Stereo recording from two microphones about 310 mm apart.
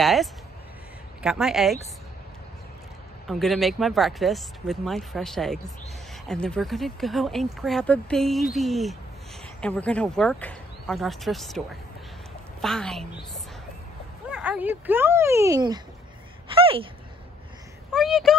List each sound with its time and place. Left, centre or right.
0.0 s speech: centre
3.3 s speech: centre
12.6 s speech: centre
14.3 s speech: centre
17.9 s speech: centre